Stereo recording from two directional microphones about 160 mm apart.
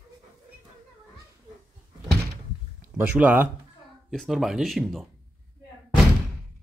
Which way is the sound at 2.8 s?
10° right (ahead or behind).